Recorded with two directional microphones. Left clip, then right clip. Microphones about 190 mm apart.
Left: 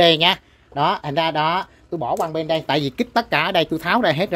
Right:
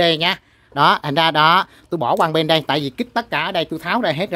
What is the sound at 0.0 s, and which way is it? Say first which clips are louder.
Speech: left 2 dB; 5° right (ahead or behind).